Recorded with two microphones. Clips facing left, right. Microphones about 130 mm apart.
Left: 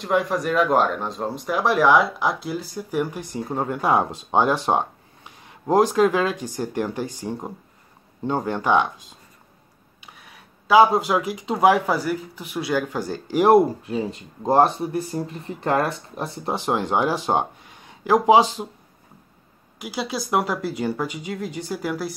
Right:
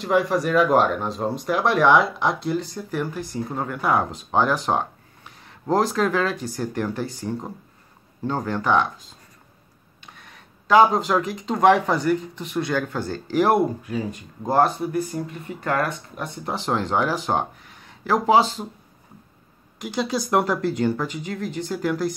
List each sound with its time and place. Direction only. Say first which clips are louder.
0.0 s speech: right 1 dB; centre (ahead or behind); by 8.8 s 15° left (ahead or behind)
10.1 s speech: even; 5° left (ahead or behind)
13.5 s speech: left 4 dB; 25° left (ahead or behind)
16.4 s speech: left 1 dB; 15° left (ahead or behind)
19.8 s speech: right 3 dB; 5° left (ahead or behind)